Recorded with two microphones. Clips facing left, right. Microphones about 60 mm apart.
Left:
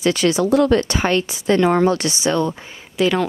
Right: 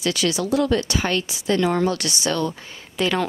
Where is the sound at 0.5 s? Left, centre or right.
Left.